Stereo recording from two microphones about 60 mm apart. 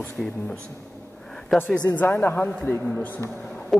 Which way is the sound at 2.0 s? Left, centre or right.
Left.